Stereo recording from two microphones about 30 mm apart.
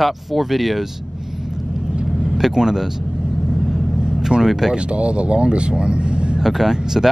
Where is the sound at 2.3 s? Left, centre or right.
Centre.